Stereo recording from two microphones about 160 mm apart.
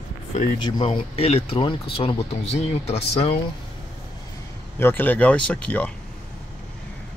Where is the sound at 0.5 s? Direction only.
30° left (ahead or behind).